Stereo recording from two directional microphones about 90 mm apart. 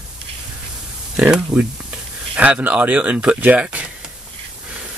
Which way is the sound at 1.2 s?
15° right (ahead or behind).